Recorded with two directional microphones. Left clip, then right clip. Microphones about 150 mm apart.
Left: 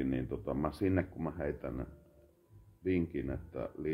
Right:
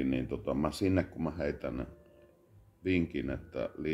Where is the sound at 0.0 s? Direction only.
15° right (ahead or behind).